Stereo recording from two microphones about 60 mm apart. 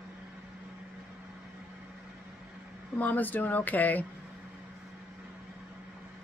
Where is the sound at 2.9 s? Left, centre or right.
Left.